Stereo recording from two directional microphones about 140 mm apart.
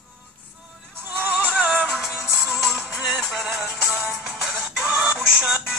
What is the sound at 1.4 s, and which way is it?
Music, 5° right (ahead or behind).